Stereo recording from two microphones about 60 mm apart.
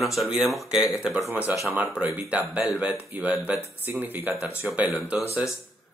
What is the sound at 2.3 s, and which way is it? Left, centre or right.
Speech, right.